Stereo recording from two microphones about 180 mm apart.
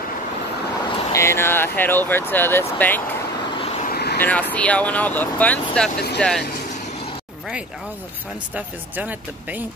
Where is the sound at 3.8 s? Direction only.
60° left (ahead or behind).